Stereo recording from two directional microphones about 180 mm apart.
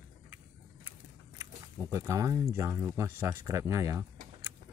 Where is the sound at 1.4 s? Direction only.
15° right (ahead or behind).